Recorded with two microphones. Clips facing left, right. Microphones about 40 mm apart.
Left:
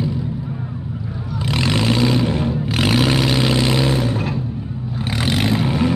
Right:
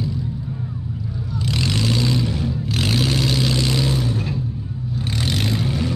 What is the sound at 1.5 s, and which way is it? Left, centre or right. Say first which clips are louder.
Vehicle: left 4 dB; left.